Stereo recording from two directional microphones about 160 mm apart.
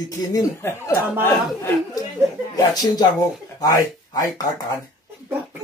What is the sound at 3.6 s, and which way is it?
Speech, 25° left (ahead or behind).